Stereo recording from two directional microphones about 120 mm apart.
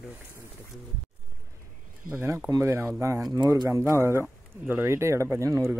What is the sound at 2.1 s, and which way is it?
Speech, 20° right (ahead or behind).